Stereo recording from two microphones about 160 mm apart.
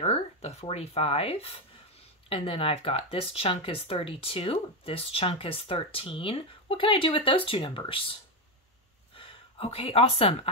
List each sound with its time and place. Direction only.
0.0 s speech: 40° left (ahead or behind)